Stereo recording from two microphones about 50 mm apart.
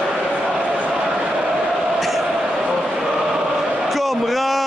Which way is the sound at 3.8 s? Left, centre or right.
Centre.